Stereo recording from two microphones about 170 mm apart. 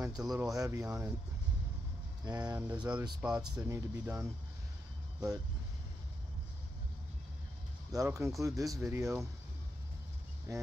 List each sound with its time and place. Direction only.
0.3 s speech: 20° right (ahead or behind)
2.2 s speech: 25° right (ahead or behind)
7.9 s speech: 20° right (ahead or behind)
10.5 s speech: 20° right (ahead or behind)